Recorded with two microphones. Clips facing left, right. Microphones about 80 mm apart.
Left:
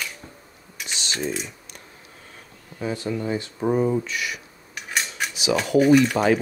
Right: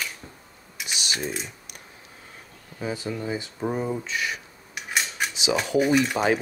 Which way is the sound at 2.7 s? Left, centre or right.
Centre.